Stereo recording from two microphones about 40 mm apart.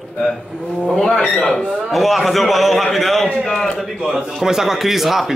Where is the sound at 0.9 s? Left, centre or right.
Centre.